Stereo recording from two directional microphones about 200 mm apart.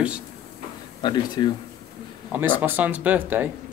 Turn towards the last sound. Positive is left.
turn(degrees=-10)  # may be behind; listen again after turning